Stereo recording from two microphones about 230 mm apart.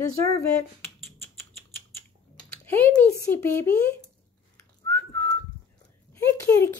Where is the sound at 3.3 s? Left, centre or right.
Centre.